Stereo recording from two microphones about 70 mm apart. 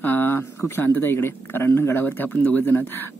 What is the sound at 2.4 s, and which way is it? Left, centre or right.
Speech, left.